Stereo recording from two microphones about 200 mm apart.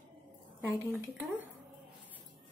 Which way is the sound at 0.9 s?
10° right (ahead or behind).